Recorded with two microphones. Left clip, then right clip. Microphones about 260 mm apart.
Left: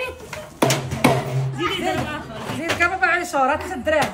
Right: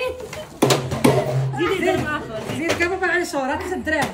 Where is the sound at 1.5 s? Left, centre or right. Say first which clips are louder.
Right 2 dB; left.